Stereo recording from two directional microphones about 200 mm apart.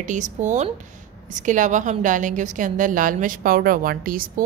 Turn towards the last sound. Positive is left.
turn(degrees=-45)  # may be behind; listen again after turning